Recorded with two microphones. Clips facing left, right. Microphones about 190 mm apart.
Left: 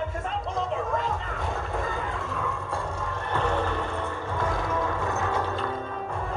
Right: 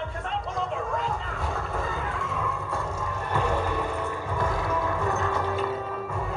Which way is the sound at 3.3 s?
10° right (ahead or behind).